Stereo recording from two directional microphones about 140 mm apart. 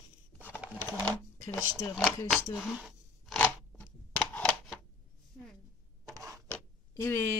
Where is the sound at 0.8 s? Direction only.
15° left (ahead or behind).